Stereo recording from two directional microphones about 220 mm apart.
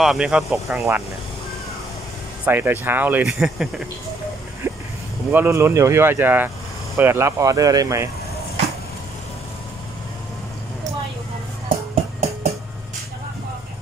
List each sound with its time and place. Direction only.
0.0 s speech: centre (ahead or behind)
2.4 s speech: 10° right (ahead or behind)
4.6 s vehicle: 10° right (ahead or behind)
5.3 s speech: 10° right (ahead or behind)
11.7 s music: 25° right (ahead or behind)